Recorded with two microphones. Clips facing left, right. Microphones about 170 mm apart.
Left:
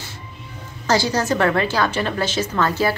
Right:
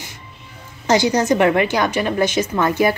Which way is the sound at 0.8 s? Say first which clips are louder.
Right 4 dB; 20° right (ahead or behind).